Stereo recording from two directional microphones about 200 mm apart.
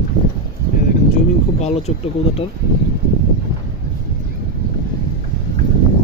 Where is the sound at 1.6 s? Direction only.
35° left (ahead or behind).